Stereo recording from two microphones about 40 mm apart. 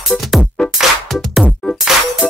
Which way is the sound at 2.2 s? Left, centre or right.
Left.